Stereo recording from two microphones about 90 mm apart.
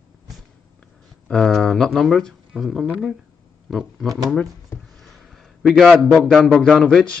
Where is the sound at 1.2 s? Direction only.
5° left (ahead or behind).